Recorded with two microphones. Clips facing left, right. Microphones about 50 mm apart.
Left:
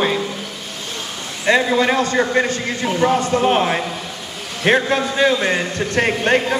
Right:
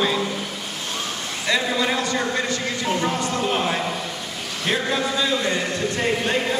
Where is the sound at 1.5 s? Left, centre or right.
Left.